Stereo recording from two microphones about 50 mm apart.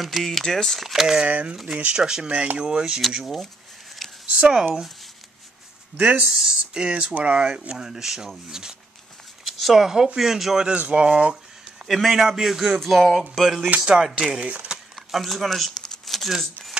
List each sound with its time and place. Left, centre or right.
0.0 s speech: centre
1.2 s speech: right
3.1 s speech: centre
4.3 s speech: right
6.2 s speech: centre
7.7 s speech: centre
9.4 s a sound: centre
9.8 s speech: centre
10.7 s speech: right
11.9 s speech: centre
13.7 s speech: centre
15.0 s a sound: centre